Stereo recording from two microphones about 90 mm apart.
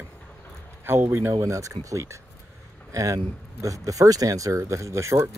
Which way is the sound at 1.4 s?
35° right (ahead or behind).